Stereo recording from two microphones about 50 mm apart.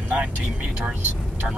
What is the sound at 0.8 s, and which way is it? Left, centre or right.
Speech, right.